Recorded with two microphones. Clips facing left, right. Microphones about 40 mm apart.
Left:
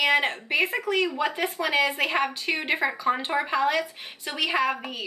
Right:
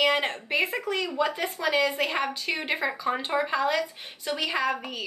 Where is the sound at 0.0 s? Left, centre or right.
Centre.